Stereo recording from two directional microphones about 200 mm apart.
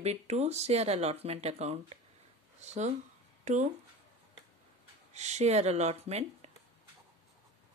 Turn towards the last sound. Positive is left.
turn(degrees=-30)  # may be behind; listen again after turning